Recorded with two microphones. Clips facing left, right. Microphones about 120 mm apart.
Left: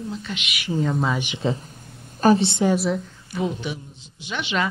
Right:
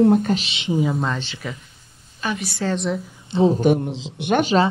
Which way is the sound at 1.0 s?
10° left (ahead or behind).